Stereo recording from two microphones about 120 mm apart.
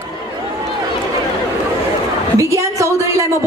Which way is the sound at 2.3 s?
25° right (ahead or behind).